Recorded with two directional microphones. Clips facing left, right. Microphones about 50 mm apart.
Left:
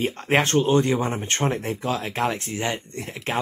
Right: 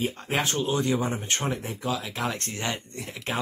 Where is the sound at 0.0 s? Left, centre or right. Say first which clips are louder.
Left 6 dB; left.